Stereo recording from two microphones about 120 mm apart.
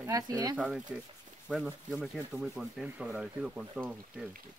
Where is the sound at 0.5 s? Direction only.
5° right (ahead or behind).